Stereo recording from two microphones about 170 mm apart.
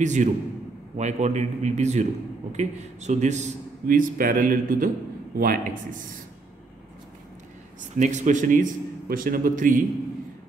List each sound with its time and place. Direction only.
0.0 s a man's voice: 45° right (ahead or behind)
8.0 s a man's voice: 45° right (ahead or behind)